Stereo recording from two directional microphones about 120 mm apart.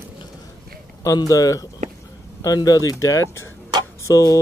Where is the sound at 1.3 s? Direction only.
30° left (ahead or behind).